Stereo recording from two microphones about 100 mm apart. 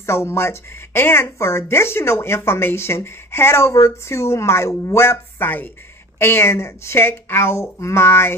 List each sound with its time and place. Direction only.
0.0 s speech: 25° left (ahead or behind)